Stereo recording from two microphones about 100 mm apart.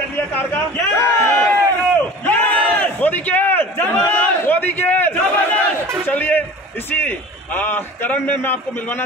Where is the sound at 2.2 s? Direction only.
15° left (ahead or behind).